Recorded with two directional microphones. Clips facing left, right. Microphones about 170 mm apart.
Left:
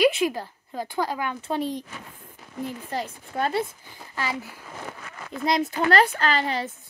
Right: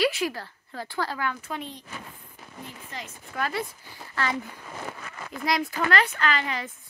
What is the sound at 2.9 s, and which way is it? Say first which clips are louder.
Speech: left 9 dB; 35° left (ahead or behind).